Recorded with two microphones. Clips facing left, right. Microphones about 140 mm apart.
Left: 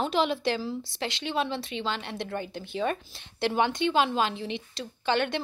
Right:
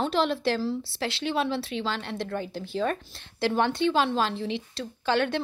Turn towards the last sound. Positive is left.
turn(degrees=0)  # may be behind; listen again after turning